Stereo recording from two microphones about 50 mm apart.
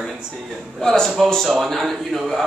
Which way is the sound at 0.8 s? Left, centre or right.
Centre.